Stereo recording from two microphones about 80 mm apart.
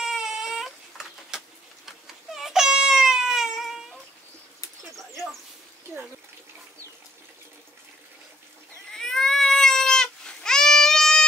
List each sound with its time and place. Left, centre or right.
0.0 s baby cry: centre
4.9 s a sound: centre
8.9 s cat: centre